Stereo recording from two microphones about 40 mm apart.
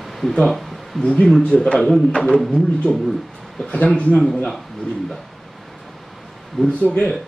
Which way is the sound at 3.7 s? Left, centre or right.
Left.